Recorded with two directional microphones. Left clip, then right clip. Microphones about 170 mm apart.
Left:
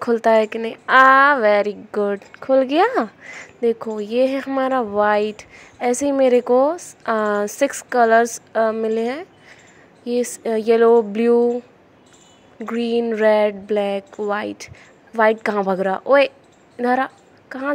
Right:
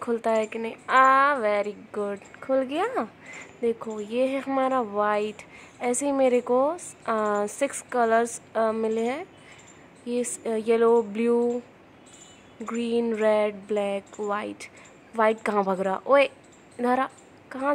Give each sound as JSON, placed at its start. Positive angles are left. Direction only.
{"t": 0.0, "sound": "a woman's voice", "side_deg": 35}
{"t": 12.6, "sound": "a woman's voice", "side_deg": 25}